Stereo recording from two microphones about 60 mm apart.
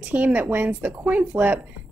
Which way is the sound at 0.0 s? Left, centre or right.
Right.